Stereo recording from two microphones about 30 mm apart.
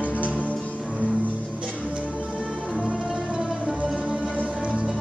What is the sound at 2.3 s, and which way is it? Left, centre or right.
Music, centre.